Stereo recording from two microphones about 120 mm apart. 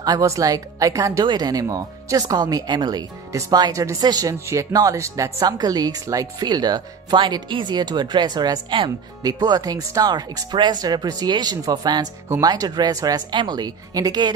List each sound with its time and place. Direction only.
0.0 s a woman's voice: 30° right (ahead or behind)